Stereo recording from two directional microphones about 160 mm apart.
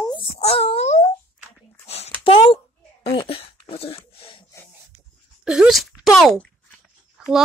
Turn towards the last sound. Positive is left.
turn(degrees=-5)  # may be behind; listen again after turning